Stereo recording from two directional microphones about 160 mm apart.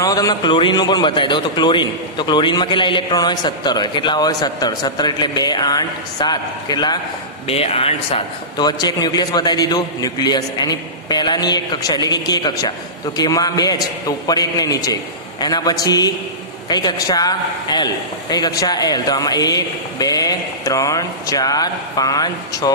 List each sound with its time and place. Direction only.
0.0 s a man's voice: 20° left (ahead or behind)
7.4 s a man's voice: 40° left (ahead or behind)
8.6 s a man's voice: 25° left (ahead or behind)